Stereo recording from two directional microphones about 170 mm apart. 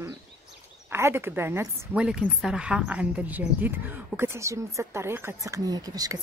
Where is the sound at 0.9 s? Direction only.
15° right (ahead or behind).